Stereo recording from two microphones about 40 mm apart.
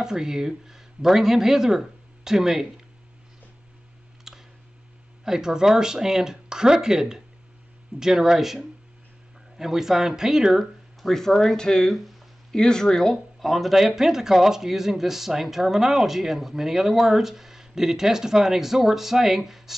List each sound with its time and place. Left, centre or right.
0.0 s speech: centre
4.3 s a sound: centre
5.2 s speech: centre
11.0 s speech: centre
13.4 s speech: centre